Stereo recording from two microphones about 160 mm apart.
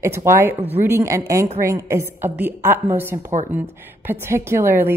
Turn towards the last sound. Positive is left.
turn(degrees=-15)  # may be behind; listen again after turning